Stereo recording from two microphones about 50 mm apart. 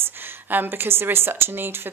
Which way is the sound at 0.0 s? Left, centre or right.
Right.